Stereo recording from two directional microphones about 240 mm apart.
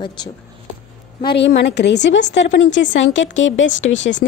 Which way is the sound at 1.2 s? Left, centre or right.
Left.